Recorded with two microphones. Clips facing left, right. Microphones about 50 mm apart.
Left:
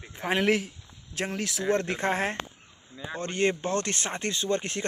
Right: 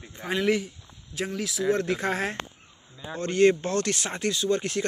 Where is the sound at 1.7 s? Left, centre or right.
Left.